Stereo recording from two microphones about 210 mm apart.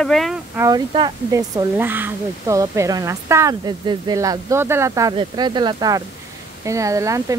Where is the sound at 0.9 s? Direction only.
20° right (ahead or behind).